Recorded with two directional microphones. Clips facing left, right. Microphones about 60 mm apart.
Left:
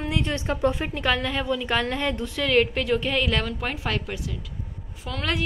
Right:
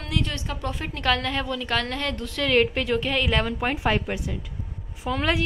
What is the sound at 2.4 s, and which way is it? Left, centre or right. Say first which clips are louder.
A woman's voice: even; centre.